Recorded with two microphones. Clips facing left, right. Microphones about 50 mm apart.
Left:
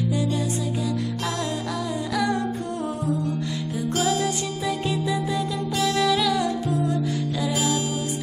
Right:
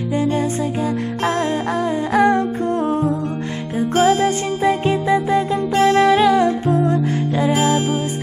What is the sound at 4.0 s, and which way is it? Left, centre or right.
Music, right.